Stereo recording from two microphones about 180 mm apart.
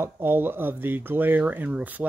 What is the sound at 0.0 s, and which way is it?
Speech, 10° right (ahead or behind).